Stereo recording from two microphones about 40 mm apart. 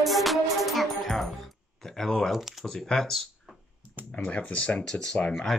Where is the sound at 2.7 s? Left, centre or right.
Centre.